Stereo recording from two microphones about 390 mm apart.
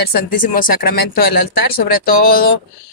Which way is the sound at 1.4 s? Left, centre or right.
Left.